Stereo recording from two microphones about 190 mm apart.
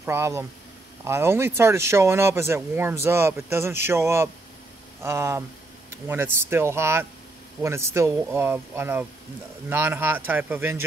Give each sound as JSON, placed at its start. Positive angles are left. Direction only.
{"t": 0.0, "sound": "speech", "side_deg": -15}